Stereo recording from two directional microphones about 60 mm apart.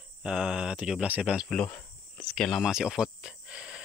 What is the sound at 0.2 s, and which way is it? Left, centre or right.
Speech, centre.